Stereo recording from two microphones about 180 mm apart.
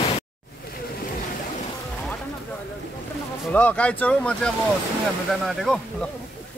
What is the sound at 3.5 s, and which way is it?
Speech, 10° left (ahead or behind).